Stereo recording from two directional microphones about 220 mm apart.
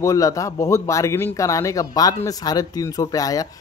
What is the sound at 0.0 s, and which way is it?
Speech, 15° left (ahead or behind).